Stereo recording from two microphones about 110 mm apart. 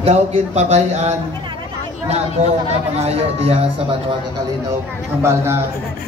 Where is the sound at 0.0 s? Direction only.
75° right (ahead or behind).